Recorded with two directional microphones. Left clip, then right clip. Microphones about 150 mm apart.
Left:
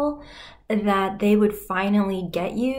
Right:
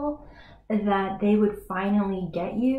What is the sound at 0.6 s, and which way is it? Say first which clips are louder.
Speech: left 3 dB; 20° left (ahead or behind).